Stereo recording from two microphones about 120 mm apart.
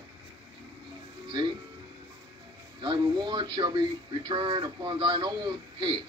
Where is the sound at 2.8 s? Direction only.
40° right (ahead or behind).